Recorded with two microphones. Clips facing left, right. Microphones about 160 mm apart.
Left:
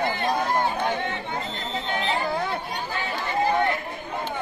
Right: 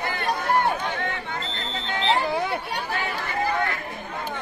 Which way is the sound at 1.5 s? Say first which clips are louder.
Left 2 dB; 15° left (ahead or behind).